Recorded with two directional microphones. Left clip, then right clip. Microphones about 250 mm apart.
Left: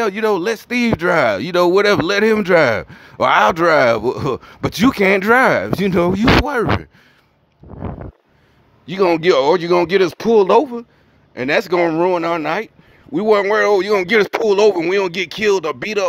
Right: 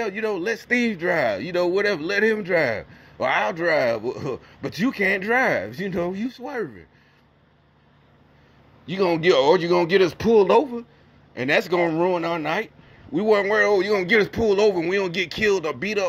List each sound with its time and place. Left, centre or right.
0.0 s speech: centre
8.8 s speech: left
11.7 s speech: left